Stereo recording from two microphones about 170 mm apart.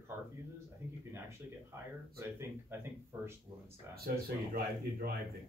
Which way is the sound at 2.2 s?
15° right (ahead or behind).